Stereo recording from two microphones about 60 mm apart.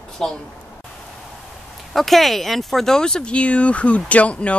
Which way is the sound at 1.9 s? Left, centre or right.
Centre.